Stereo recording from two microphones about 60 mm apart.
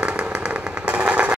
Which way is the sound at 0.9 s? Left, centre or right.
Centre.